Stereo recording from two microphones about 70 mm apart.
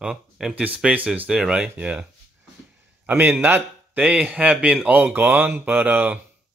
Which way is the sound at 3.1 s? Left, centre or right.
Right.